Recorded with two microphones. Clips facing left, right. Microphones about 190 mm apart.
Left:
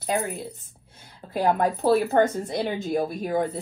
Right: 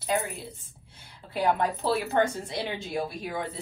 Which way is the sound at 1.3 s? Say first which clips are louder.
Left 3 dB; 50° left (ahead or behind).